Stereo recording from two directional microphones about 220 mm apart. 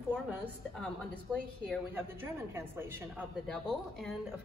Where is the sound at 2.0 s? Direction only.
10° right (ahead or behind).